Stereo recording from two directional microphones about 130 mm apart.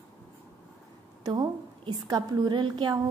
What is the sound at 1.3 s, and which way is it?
A woman's voice, 30° right (ahead or behind).